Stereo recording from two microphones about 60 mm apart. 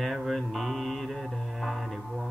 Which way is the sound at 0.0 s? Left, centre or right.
Centre.